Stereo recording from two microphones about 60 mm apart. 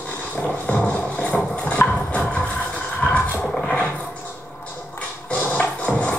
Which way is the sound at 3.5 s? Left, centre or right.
Centre.